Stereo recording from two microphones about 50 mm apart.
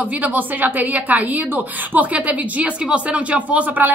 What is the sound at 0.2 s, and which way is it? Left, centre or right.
A woman's voice, right.